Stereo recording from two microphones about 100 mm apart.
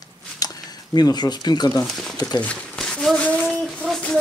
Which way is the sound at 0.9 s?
45° left (ahead or behind).